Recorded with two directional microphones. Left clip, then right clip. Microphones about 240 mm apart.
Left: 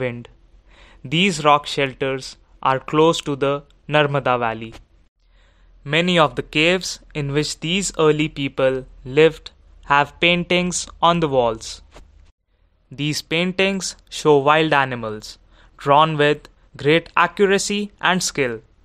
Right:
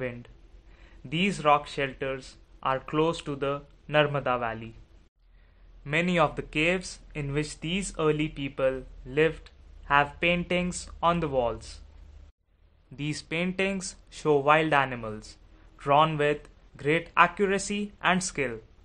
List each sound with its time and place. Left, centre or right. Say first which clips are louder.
0.0 s speech: left 9 dB; left
5.9 s speech: left 8 dB; left
12.9 s speech: left 10 dB; left